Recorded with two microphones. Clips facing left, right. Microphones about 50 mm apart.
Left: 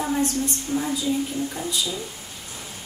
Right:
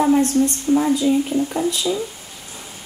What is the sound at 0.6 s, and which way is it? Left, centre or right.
Speech, right.